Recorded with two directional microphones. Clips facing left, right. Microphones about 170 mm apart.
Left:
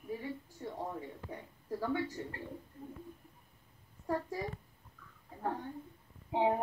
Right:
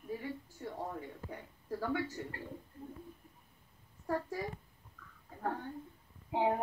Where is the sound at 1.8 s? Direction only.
30° left (ahead or behind).